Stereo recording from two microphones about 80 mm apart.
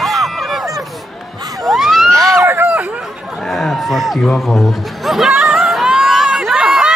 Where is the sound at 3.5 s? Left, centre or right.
Centre.